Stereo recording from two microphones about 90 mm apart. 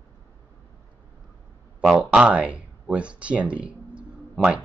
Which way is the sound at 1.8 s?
10° right (ahead or behind).